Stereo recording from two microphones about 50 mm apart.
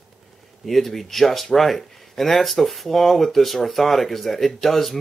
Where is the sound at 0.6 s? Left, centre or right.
Centre.